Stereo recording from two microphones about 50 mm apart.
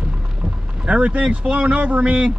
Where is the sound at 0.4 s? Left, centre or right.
Right.